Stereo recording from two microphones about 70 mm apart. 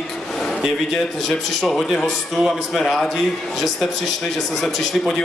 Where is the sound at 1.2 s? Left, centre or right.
Centre.